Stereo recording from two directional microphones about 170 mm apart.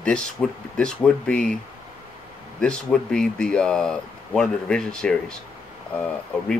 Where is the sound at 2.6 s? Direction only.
5° left (ahead or behind).